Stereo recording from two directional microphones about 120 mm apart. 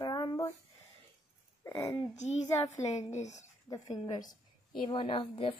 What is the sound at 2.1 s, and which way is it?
Speech, 75° left (ahead or behind).